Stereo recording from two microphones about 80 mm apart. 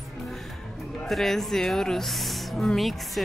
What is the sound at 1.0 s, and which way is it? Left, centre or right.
Speech, centre.